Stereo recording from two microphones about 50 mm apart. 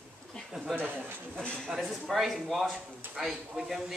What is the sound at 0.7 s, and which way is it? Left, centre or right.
Speech, right.